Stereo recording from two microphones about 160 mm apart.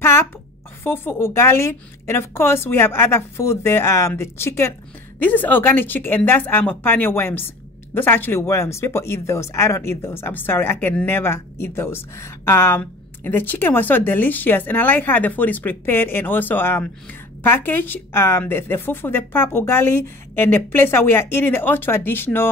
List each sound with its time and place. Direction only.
0.8 s speech: 15° left (ahead or behind)